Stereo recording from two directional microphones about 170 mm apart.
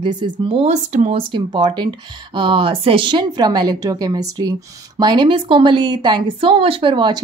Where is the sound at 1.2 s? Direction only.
30° right (ahead or behind).